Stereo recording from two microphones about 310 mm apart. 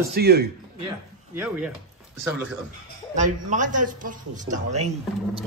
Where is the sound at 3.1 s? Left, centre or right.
Right.